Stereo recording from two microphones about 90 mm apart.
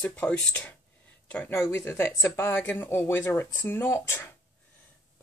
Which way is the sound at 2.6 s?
15° left (ahead or behind).